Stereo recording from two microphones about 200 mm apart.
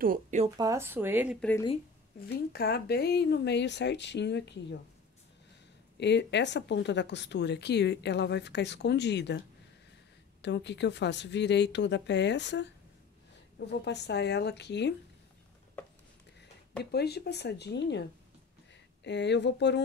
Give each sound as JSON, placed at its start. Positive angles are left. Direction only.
{"t": 0.0, "sound": "speech", "side_deg": -40}
{"t": 0.6, "sound": "speech", "side_deg": -15}
{"t": 2.5, "sound": "speech", "side_deg": 50}
{"t": 5.9, "sound": "speech", "side_deg": 60}
{"t": 10.4, "sound": "speech", "side_deg": 60}
{"t": 16.9, "sound": "speech", "side_deg": 55}
{"t": 19.0, "sound": "speech", "side_deg": 60}